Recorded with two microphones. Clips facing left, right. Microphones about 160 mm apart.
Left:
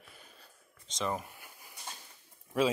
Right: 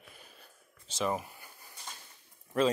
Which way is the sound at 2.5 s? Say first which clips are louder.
Right 1 dB; 5° left (ahead or behind).